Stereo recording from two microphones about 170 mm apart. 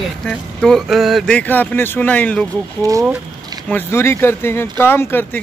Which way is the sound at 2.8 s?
20° right (ahead or behind).